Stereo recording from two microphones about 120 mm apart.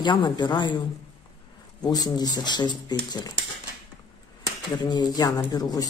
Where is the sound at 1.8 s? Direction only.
35° left (ahead or behind).